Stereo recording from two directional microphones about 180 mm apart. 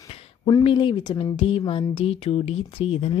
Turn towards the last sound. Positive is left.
turn(degrees=35)  # may be behind; listen again after turning